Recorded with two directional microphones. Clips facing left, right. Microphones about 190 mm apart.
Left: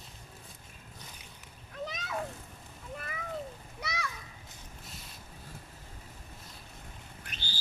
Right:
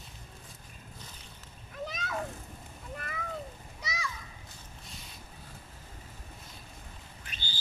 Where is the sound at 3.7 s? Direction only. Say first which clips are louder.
Left 1 dB; 60° left (ahead or behind).